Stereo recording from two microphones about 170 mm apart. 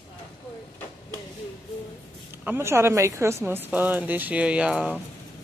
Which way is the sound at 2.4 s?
15° right (ahead or behind).